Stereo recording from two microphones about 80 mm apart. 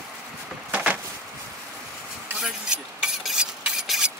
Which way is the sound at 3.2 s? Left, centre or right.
Centre.